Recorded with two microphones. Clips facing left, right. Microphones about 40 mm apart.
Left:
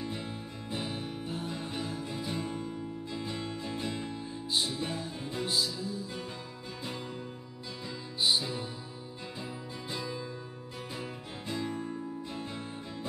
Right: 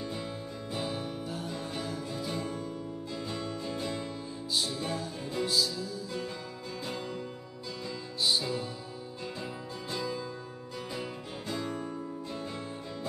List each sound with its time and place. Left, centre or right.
0.0 s music: left
8.2 s music: centre
9.8 s music: centre
11.4 s music: centre